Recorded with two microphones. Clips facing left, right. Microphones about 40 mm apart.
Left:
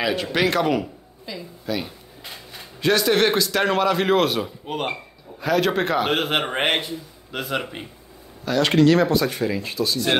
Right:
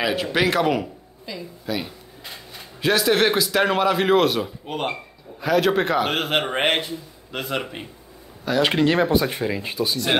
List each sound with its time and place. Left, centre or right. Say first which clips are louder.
0.0 s a woman's voice: even; centre